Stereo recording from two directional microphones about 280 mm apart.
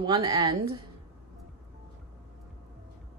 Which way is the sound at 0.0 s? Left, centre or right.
Centre.